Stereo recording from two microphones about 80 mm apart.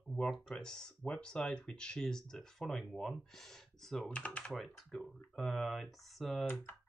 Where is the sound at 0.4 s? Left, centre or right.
Centre.